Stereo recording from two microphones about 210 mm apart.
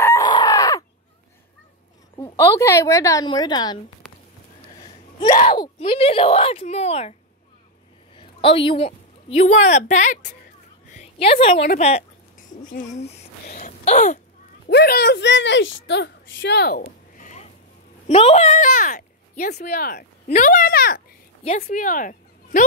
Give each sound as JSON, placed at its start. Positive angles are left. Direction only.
{"t": 0.0, "sound": "chicken", "side_deg": 15}
{"t": 2.3, "sound": "a woman's voice", "side_deg": 15}
{"t": 5.6, "sound": "speech", "side_deg": 25}
{"t": 8.2, "sound": "a woman's voice", "side_deg": 25}
{"t": 12.6, "sound": "speech", "side_deg": 40}
{"t": 14.7, "sound": "a woman's voice", "side_deg": 50}
{"t": 16.8, "sound": "a sound", "side_deg": 35}
{"t": 18.0, "sound": "speech", "side_deg": 30}